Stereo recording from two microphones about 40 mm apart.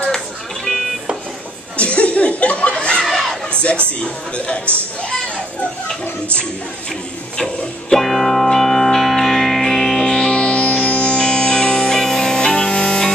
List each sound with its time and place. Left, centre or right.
1.8 s chuckle: left
3.1 s a sound: centre
4.7 s speech: left
7.3 s music: centre
8.1 s music: centre
9.9 s music: centre